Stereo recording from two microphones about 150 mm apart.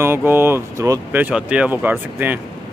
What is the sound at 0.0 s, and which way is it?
Speech, 15° right (ahead or behind).